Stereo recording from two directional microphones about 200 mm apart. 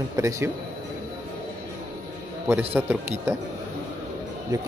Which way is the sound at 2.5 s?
10° right (ahead or behind).